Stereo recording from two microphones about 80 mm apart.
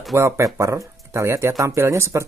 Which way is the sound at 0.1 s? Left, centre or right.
Right.